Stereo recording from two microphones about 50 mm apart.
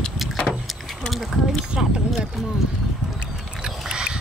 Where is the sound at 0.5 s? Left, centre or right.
Centre.